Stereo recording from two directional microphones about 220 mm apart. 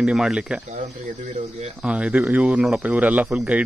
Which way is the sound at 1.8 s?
5° right (ahead or behind).